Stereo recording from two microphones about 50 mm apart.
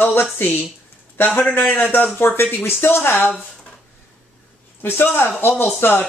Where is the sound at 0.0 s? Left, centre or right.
Left.